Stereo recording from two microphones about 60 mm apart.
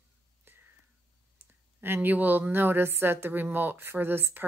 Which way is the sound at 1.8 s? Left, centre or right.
Right.